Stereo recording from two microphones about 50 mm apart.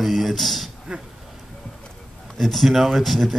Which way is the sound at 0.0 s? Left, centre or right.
Centre.